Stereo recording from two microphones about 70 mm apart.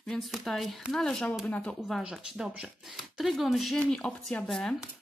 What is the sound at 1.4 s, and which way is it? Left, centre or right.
Speech, centre.